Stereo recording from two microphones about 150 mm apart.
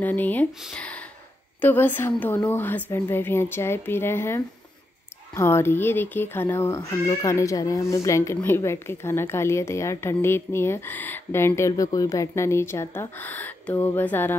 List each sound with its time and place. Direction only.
0.0 s speech: 10° left (ahead or behind)